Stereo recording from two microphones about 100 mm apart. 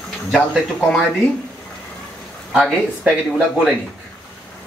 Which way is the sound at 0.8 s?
10° left (ahead or behind).